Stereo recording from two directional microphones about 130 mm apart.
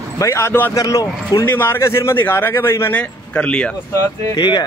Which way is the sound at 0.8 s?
30° left (ahead or behind).